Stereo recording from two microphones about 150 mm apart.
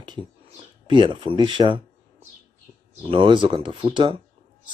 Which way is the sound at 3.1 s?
35° right (ahead or behind).